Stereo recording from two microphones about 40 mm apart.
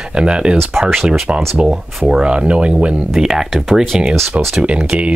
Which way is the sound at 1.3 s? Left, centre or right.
Right.